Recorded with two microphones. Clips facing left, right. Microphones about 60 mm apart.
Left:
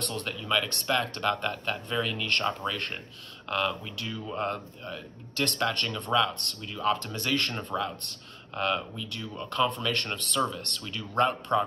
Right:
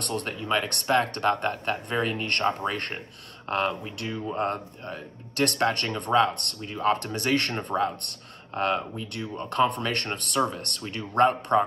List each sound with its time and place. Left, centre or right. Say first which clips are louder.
0.0 s speech: right 3 dB; right
7.5 s speech: right 5 dB; right